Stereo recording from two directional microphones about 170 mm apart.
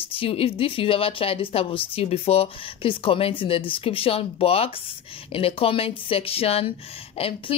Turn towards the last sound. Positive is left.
turn(degrees=35)  # may be behind; listen again after turning